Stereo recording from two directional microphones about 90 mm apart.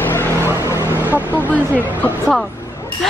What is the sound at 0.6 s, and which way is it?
Music, 30° right (ahead or behind).